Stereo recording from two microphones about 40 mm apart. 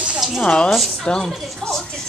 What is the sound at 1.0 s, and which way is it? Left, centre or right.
Speech, centre.